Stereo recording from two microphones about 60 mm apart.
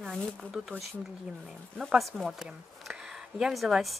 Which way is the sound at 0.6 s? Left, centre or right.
Centre.